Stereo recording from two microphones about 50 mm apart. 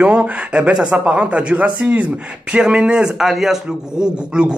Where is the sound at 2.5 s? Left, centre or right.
Centre.